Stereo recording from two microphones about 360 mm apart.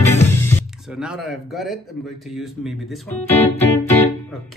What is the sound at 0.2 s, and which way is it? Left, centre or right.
Speech, centre.